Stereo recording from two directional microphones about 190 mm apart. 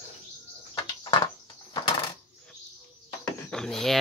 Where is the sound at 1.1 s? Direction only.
25° left (ahead or behind).